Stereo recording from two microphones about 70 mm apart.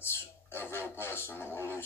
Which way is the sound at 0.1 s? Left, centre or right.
Left.